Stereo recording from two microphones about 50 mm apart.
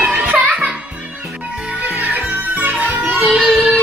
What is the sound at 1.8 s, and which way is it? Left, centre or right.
Music, right.